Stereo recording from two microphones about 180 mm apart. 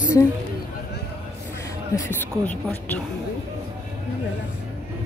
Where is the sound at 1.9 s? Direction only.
10° left (ahead or behind).